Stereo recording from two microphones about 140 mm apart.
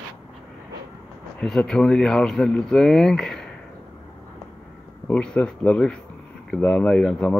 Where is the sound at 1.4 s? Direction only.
5° left (ahead or behind).